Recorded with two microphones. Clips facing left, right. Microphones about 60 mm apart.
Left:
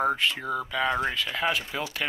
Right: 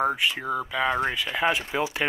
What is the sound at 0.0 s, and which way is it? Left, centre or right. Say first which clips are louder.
Speech: right 1 dB; centre.